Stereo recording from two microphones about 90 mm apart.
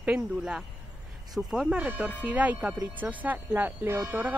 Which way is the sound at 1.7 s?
15° right (ahead or behind).